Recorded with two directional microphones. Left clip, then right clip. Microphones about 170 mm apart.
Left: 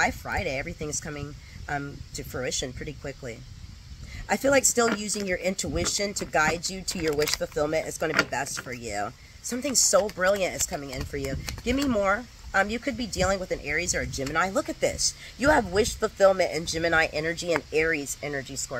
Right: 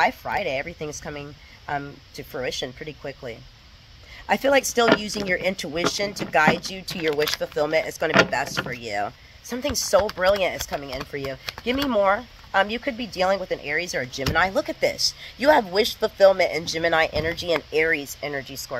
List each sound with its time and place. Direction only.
0.0 s speech: 20° left (ahead or behind)
7.1 s speech: centre (ahead or behind)
7.5 s speech: 15° left (ahead or behind)